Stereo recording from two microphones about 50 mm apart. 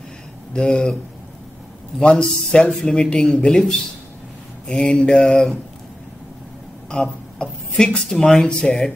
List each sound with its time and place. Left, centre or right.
0.5 s speech: centre
2.0 s a man's voice: centre
7.0 s speech: centre